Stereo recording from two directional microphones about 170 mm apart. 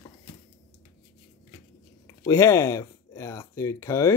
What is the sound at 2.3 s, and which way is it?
Speech, 15° left (ahead or behind).